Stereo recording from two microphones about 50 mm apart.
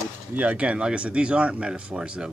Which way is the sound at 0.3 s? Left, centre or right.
Right.